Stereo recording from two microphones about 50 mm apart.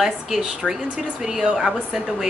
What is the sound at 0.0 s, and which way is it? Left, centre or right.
A woman's voice, centre.